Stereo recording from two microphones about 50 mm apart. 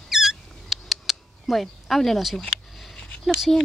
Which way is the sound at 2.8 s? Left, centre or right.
Centre.